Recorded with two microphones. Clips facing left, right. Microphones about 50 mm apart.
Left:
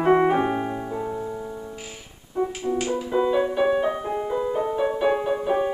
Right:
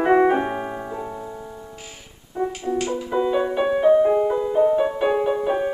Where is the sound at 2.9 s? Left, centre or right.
Centre.